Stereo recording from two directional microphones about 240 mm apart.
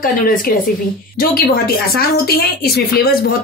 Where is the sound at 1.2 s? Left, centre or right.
Left.